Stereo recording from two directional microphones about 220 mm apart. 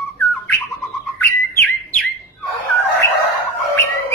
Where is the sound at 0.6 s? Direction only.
Centre (ahead or behind).